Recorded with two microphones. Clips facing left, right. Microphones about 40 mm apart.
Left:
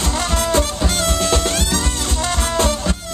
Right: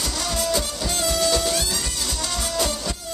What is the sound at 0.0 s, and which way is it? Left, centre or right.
Music, left.